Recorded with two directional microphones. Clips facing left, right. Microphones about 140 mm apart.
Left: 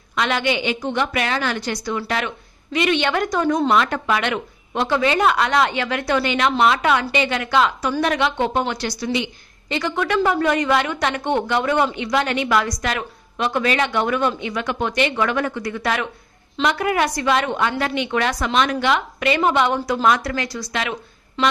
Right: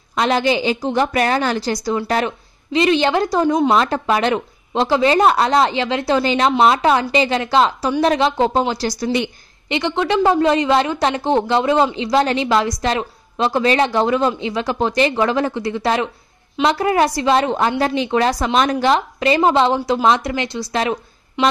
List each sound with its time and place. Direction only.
0.1 s a woman's voice: 35° right (ahead or behind)
3.4 s a woman's voice: 15° right (ahead or behind)
3.7 s a woman's voice: 30° right (ahead or behind); by 9.3 s 45° right (ahead or behind)
9.7 s a woman's voice: 25° right (ahead or behind)